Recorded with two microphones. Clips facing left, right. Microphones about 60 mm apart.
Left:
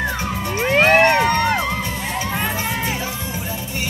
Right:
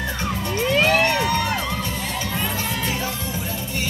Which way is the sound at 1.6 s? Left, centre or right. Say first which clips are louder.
Left 3 dB; left.